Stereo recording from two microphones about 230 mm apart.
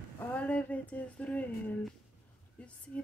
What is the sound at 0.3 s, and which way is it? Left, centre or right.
A woman's voice, centre.